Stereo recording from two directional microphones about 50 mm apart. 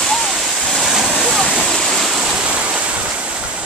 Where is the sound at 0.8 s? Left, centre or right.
Centre.